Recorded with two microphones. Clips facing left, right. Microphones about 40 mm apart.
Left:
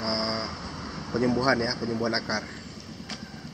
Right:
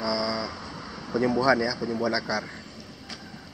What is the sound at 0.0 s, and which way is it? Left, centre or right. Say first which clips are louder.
Vehicle: right 2 dB; centre.